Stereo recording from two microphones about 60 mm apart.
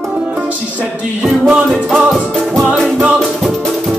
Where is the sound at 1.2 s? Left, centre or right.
Centre.